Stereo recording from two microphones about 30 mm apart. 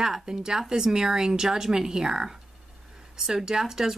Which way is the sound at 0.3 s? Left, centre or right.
Right.